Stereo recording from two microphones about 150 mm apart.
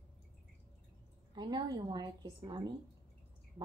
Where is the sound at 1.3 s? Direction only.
30° right (ahead or behind).